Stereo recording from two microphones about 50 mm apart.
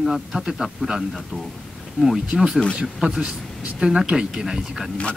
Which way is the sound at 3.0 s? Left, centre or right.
Centre.